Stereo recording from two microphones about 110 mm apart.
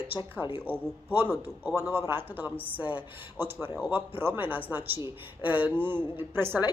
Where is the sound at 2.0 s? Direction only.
20° right (ahead or behind).